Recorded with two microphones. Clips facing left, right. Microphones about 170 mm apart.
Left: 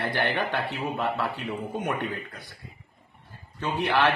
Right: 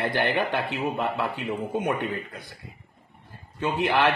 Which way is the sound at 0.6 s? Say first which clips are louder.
Right 2 dB; centre (ahead or behind).